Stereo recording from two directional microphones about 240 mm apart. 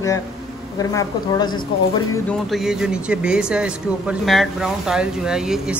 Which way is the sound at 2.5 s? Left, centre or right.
Centre.